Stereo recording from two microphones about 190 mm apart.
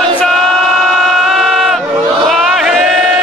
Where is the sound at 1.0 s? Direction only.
Centre (ahead or behind).